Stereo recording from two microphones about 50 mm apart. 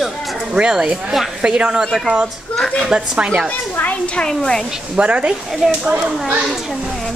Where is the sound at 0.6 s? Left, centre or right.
Centre.